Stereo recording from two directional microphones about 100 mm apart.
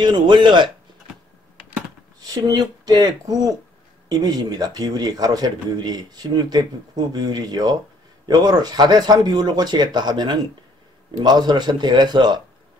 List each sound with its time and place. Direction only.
0.0 s a man's voice: 50° right (ahead or behind)
2.1 s a man's voice: 40° right (ahead or behind)